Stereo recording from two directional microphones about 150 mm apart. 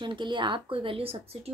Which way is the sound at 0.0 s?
30° right (ahead or behind).